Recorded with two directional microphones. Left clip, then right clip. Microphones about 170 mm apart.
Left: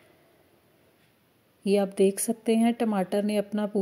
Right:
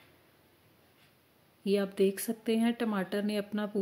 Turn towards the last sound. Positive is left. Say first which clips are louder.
# left 7 dB
turn(degrees=25)  # may be behind; listen again after turning